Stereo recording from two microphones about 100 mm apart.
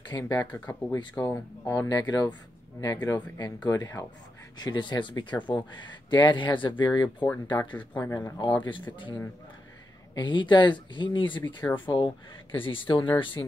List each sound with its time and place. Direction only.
0.1 s speech: 40° left (ahead or behind)
0.5 s speech: 15° left (ahead or behind)
0.9 s speech: 40° left (ahead or behind)
1.6 s speech: 30° left (ahead or behind); by 7.7 s 45° left (ahead or behind)
8.0 s speech: 30° left (ahead or behind)
8.4 s speech: 50° left (ahead or behind)